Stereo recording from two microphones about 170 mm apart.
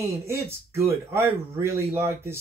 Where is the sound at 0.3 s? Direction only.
15° right (ahead or behind).